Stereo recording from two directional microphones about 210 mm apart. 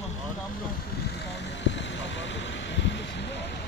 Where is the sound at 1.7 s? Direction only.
60° left (ahead or behind).